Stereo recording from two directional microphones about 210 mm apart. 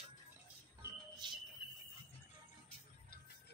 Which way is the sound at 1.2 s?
20° right (ahead or behind).